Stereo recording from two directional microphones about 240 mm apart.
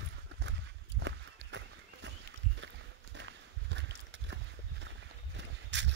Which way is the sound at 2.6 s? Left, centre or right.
Right.